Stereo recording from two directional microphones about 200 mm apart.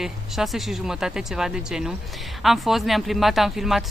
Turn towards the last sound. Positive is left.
turn(degrees=0)  # may be behind; listen again after turning